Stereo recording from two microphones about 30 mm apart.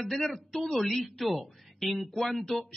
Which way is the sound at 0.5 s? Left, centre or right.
Centre.